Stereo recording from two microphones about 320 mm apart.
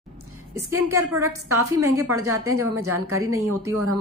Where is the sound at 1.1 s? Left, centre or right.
Right.